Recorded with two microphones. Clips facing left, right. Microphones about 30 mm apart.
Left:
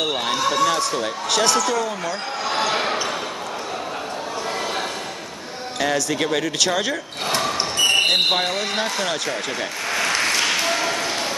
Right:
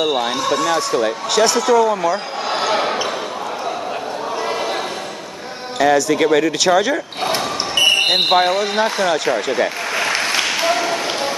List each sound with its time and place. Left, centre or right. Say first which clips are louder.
0.0 s speech: right 3 dB; centre
1.7 s basketball bounce: right 9 dB; centre
5.8 s speech: right 7 dB; centre
7.8 s basketball bounce: right 5 dB; right
8.1 s speech: right 5 dB; centre
9.3 s a sound: right 8 dB; centre